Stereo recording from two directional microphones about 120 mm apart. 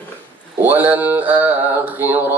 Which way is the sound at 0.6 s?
15° right (ahead or behind).